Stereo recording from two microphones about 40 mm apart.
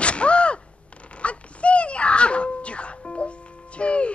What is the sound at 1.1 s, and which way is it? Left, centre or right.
Music, left.